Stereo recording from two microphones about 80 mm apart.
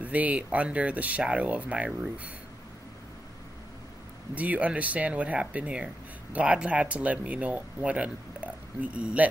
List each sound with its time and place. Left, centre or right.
0.0 s speech: centre
4.4 s speech: centre